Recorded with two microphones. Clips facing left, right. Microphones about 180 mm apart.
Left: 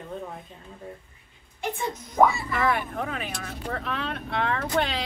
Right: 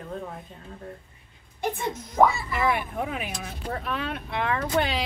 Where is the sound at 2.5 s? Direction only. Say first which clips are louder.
Even; 10° right (ahead or behind).